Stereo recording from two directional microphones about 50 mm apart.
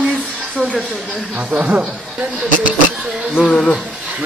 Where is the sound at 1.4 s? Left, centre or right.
Right.